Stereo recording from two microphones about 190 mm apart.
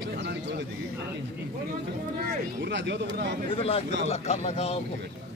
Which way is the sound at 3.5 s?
30° left (ahead or behind).